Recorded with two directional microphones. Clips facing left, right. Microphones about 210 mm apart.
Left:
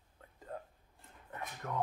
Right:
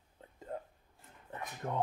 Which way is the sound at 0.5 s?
25° right (ahead or behind).